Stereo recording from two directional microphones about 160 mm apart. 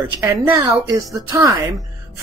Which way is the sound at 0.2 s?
15° right (ahead or behind).